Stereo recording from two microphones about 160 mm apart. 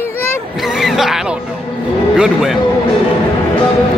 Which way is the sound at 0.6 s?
Centre (ahead or behind).